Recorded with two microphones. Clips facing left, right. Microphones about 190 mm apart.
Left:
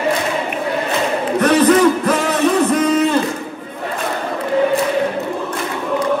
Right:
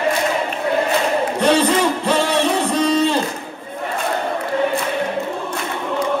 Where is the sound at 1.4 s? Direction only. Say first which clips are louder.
Left 5 dB; 30° right (ahead or behind).